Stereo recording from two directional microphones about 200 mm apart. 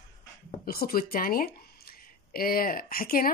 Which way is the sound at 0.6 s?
50° left (ahead or behind).